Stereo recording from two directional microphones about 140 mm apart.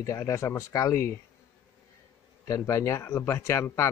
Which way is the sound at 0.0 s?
20° left (ahead or behind).